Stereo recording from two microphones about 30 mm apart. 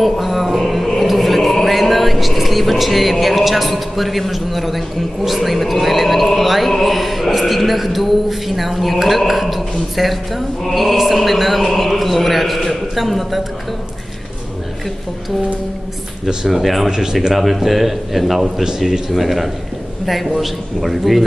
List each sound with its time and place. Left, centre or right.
0.0 s music: centre
1.0 s speech: centre
6.4 s chant: centre
16.4 s chant: centre
16.9 s speech: centre
17.3 s chant: centre